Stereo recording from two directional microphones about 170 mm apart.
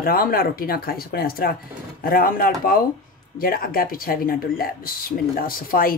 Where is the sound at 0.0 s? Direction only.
60° left (ahead or behind).